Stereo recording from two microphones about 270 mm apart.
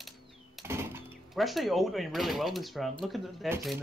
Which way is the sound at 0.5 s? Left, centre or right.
Centre.